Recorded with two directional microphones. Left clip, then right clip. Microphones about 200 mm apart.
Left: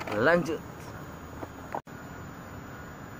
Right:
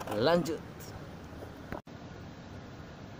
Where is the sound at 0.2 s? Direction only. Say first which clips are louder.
Left 4 dB; 20° right (ahead or behind).